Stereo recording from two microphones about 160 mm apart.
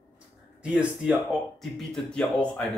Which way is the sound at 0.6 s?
5° right (ahead or behind).